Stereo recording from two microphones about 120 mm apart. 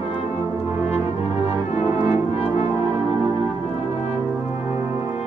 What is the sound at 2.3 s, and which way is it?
Brass instrument, 55° left (ahead or behind).